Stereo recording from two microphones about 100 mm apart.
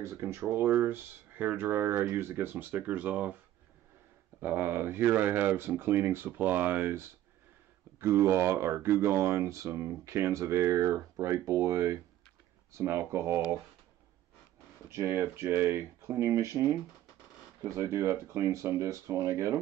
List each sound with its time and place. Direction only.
0.0 s speech: 25° right (ahead or behind)
4.4 s speech: 20° right (ahead or behind)
14.9 s speech: 25° right (ahead or behind)